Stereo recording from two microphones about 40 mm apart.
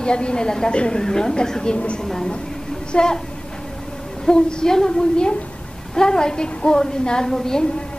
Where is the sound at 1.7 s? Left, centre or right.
Left.